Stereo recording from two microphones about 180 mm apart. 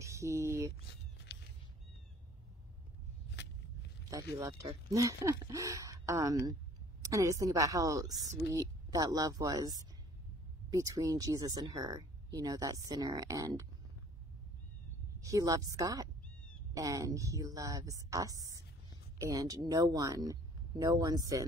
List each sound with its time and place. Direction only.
0.0 s a sound: 15° right (ahead or behind)
1.3 s cat: 65° left (ahead or behind)
4.1 s speech: 20° right (ahead or behind)
15.1 s speech: 20° right (ahead or behind)